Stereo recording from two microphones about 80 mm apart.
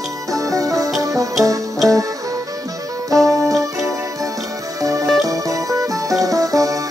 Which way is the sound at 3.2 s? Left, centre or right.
Right.